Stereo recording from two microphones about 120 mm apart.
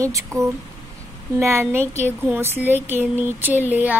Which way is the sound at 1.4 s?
20° right (ahead or behind).